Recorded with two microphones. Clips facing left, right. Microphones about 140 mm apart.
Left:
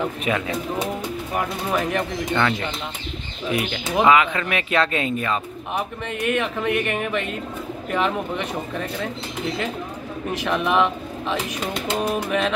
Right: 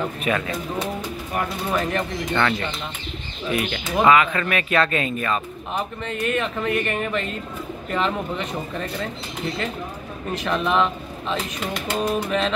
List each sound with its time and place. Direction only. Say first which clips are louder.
0.2 s speech: even; 15° left (ahead or behind)
10.4 s speech: left 1 dB; 10° left (ahead or behind)